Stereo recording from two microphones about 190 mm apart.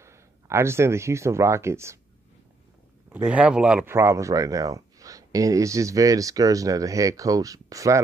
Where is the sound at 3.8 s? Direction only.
15° right (ahead or behind).